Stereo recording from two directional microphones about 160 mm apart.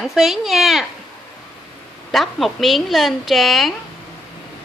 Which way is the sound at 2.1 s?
Centre (ahead or behind).